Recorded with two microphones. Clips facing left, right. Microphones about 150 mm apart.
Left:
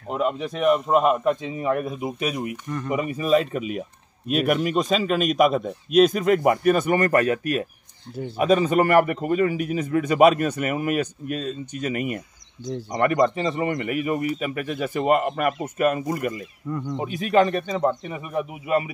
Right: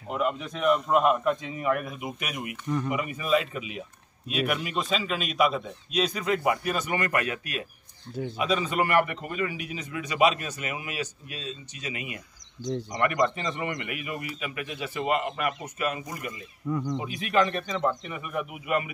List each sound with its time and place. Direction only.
0.1 s a man's voice: 30° left (ahead or behind)
0.7 s a man's voice: 20° left (ahead or behind)
0.9 s a man's voice: 35° left (ahead or behind)
12.6 s speech: 5° right (ahead or behind)
12.9 s a man's voice: 35° left (ahead or behind); by 16.3 s 50° left (ahead or behind)
16.6 s speech: centre (ahead or behind)
17.0 s a man's voice: 40° left (ahead or behind)